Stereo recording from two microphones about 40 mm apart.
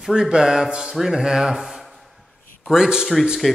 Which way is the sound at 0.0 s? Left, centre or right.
Centre.